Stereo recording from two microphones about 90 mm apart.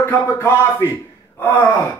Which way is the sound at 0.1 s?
25° left (ahead or behind).